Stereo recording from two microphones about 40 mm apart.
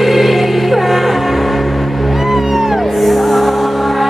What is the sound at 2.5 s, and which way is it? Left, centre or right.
Music, centre.